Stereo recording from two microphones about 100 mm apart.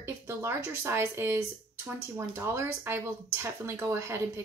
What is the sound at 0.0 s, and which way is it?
A woman's voice, 25° right (ahead or behind).